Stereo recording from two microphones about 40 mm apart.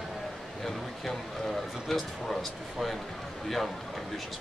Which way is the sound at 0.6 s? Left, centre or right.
Centre.